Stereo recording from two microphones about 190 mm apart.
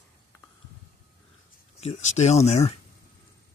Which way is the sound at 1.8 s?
35° left (ahead or behind).